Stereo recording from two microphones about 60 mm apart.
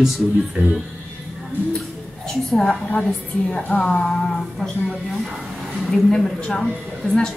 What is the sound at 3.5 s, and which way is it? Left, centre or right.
Speech, left.